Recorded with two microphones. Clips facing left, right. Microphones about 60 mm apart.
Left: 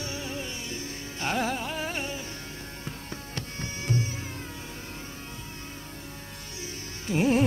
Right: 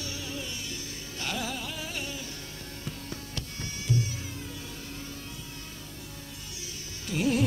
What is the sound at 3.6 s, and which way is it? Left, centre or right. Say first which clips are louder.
Music: left 1 dB; left.